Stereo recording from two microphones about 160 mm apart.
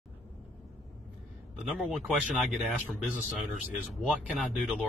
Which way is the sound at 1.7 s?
Centre (ahead or behind).